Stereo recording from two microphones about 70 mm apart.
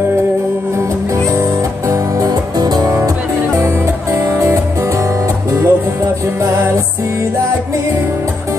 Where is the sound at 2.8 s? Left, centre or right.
Right.